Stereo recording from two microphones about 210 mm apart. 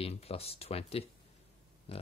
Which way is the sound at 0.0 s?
30° left (ahead or behind).